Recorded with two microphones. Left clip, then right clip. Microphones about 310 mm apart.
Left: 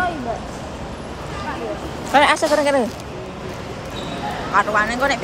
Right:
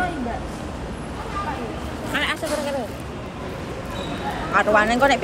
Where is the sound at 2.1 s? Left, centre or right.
Centre.